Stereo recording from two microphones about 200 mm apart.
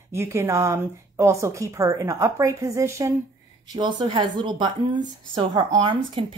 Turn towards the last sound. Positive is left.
turn(degrees=-25)  # may be behind; listen again after turning